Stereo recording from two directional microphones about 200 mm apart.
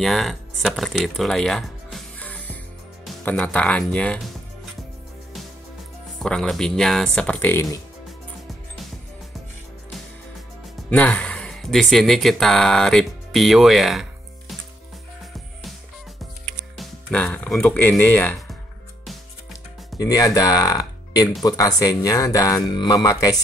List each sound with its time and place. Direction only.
0.0 s speech: centre (ahead or behind)
6.1 s speech: 5° left (ahead or behind)
10.9 s speech: 5° left (ahead or behind)
16.7 s speech: 5° left (ahead or behind)
20.0 s speech: 15° left (ahead or behind)